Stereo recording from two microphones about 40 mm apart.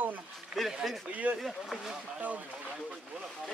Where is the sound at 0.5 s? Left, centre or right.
Right.